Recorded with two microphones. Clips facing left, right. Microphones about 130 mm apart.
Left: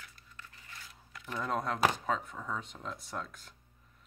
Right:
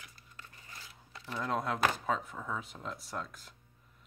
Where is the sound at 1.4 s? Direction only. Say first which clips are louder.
Left 1 dB; centre (ahead or behind).